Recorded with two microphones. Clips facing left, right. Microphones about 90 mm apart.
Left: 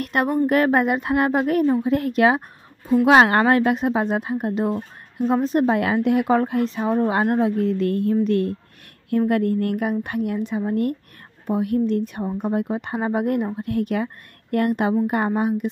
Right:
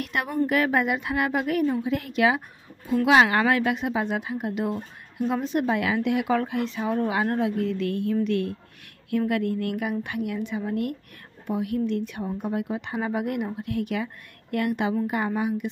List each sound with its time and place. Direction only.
0.0 s a woman's voice: 45° left (ahead or behind)